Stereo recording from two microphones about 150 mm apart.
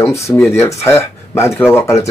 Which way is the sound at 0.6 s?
15° left (ahead or behind).